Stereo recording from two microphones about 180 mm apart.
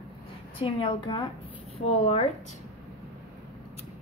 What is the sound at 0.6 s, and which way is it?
Speech, 30° left (ahead or behind).